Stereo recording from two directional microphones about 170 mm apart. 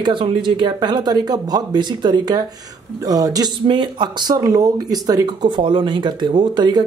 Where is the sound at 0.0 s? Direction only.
30° right (ahead or behind).